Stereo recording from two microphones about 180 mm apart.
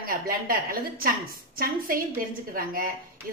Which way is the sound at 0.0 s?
55° right (ahead or behind).